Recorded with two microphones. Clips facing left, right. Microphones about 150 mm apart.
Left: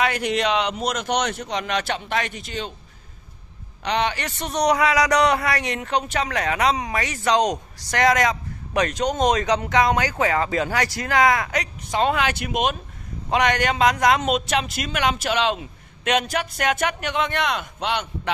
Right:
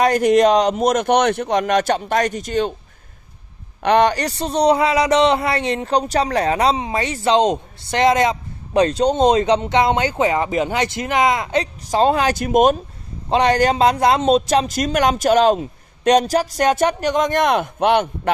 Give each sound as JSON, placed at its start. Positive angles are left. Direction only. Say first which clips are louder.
{"t": 0.0, "sound": "speech", "louder": "right 9 dB", "side_deg": -45}
{"t": 3.8, "sound": "a man's voice", "louder": "right 8 dB", "side_deg": -50}
{"t": 13.3, "sound": "a man's voice", "louder": "right 5 dB", "side_deg": -30}